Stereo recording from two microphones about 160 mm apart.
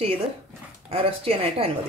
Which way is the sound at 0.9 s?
40° right (ahead or behind).